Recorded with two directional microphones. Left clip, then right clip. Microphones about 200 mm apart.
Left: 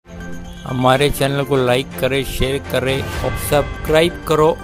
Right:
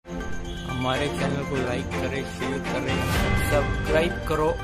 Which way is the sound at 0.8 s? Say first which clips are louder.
Left 12 dB; 50° left (ahead or behind).